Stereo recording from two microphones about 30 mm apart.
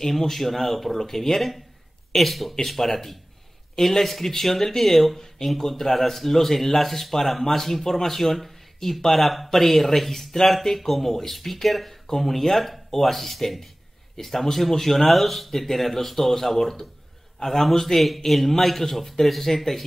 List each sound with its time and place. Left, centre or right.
0.0 s speech: centre